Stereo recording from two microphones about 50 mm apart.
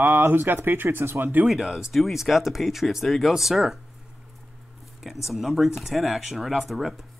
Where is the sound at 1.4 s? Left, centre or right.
Centre.